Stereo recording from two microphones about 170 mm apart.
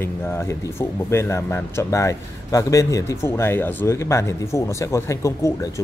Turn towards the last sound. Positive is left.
turn(degrees=15)  # may be behind; listen again after turning